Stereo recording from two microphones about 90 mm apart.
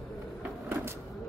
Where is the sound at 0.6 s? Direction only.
30° right (ahead or behind).